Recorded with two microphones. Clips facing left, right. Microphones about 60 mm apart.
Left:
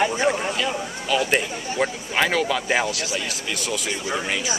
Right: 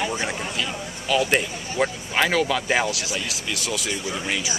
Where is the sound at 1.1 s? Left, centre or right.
Centre.